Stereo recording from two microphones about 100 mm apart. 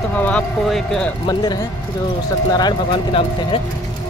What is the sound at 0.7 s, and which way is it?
Speech, 5° left (ahead or behind).